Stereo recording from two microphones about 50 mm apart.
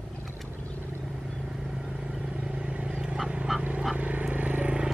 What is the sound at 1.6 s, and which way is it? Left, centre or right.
Vehicle, centre.